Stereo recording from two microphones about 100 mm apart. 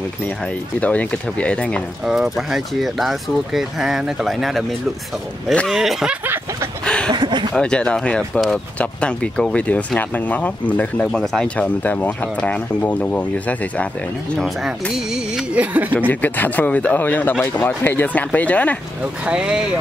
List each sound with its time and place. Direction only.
0.7 s speech: 15° left (ahead or behind)
2.0 s speech: centre (ahead or behind)
5.7 s speech: 5° right (ahead or behind)
6.2 s a sound: 20° right (ahead or behind)
7.1 s a sound: 50° right (ahead or behind)
7.5 s speech: 10° left (ahead or behind)
14.3 s speech: centre (ahead or behind); by 15.9 s 15° right (ahead or behind)
16.1 s speech: 15° left (ahead or behind)
19.2 s speech: 10° right (ahead or behind)